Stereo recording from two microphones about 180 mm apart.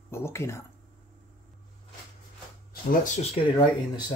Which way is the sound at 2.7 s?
50° left (ahead or behind).